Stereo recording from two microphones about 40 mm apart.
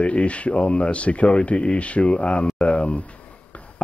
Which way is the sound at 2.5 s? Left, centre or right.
Left.